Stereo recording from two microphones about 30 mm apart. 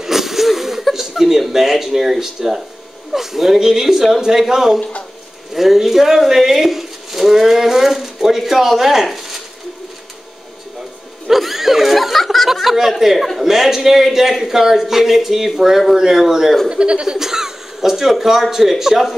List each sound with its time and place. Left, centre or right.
0.0 s a sound: centre
0.9 s speech: centre
11.2 s speech: centre
16.6 s speech: right
17.2 s speech: centre